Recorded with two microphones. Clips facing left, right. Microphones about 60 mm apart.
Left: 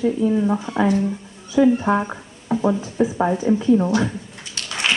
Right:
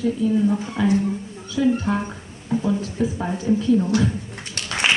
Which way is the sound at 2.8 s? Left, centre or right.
Left.